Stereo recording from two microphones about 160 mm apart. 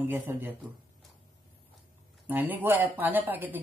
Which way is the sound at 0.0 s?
15° right (ahead or behind).